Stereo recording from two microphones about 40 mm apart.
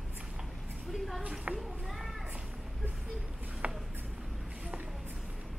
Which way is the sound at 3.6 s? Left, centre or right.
Right.